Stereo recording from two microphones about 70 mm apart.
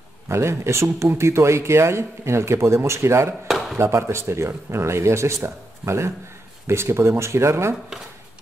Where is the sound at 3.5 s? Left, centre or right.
Centre.